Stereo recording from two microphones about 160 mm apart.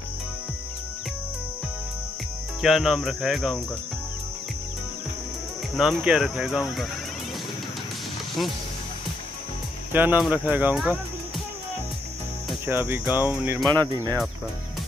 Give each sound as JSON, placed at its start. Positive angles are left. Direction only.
{"t": 2.6, "sound": "speech", "side_deg": 0}
{"t": 5.8, "sound": "speech", "side_deg": -5}
{"t": 8.4, "sound": "speech", "side_deg": 0}
{"t": 9.9, "sound": "speech", "side_deg": -10}
{"t": 12.6, "sound": "speech", "side_deg": -15}
{"t": 13.7, "sound": "speech", "side_deg": -25}